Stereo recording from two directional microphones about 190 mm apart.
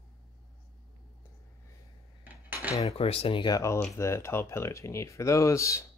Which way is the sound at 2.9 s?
30° left (ahead or behind).